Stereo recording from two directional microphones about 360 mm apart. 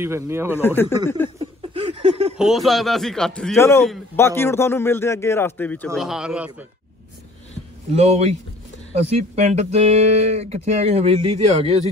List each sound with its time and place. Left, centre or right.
0.0 s speech: centre
0.6 s speech: centre
1.4 s a sound: centre
2.3 s a man's voice: centre
7.9 s speech: centre